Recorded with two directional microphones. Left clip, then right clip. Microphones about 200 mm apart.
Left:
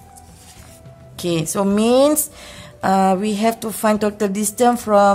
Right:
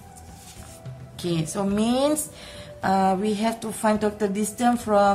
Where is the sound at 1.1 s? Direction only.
45° left (ahead or behind).